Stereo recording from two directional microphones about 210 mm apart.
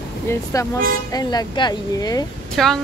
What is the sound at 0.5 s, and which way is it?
Speech, 15° left (ahead or behind).